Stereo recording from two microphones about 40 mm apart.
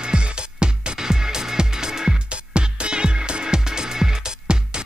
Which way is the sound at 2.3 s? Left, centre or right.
Right.